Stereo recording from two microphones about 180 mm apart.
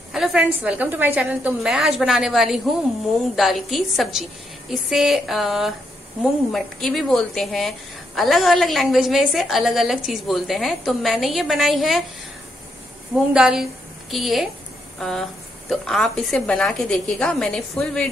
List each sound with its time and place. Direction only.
0.1 s a woman's voice: centre (ahead or behind)
13.3 s a woman's voice: 5° right (ahead or behind)